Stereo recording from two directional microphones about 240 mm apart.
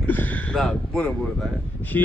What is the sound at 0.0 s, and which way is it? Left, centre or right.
A man's voice, centre.